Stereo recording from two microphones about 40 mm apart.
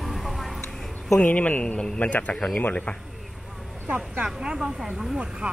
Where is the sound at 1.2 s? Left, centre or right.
Left.